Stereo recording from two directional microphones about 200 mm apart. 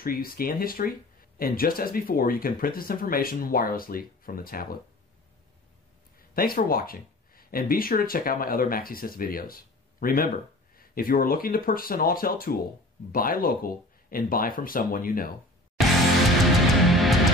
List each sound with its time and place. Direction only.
0.0 s speech: 45° left (ahead or behind)
6.3 s speech: 45° left (ahead or behind)
16.8 s music: centre (ahead or behind)